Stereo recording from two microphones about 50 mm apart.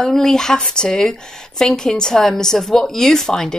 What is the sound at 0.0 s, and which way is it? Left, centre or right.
A woman's voice, centre.